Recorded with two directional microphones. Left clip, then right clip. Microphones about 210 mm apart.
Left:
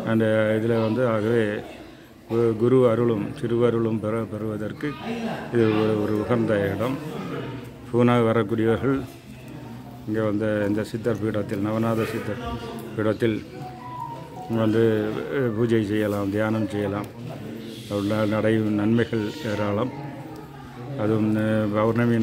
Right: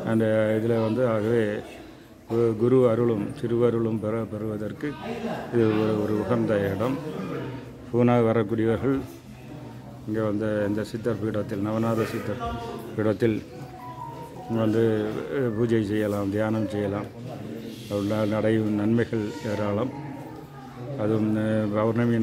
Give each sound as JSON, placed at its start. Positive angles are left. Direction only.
{"t": 0.0, "sound": "a man's voice", "side_deg": 0}
{"t": 7.9, "sound": "a man's voice", "side_deg": 0}
{"t": 10.1, "sound": "speech", "side_deg": 5}
{"t": 14.5, "sound": "a man's voice", "side_deg": 0}
{"t": 21.0, "sound": "a man's voice", "side_deg": 0}